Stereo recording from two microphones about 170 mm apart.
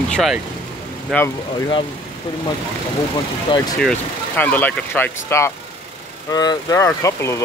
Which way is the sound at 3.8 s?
5° left (ahead or behind).